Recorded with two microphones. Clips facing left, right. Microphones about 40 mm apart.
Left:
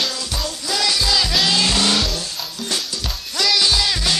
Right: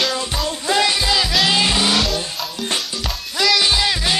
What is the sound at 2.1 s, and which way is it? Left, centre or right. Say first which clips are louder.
Music: right 3 dB; right.